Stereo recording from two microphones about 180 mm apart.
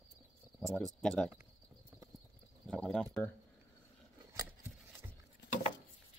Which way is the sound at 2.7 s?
5° left (ahead or behind).